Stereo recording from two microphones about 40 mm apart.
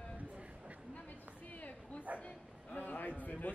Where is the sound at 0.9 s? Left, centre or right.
Left.